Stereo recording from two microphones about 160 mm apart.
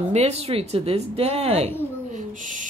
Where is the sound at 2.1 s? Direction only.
55° right (ahead or behind).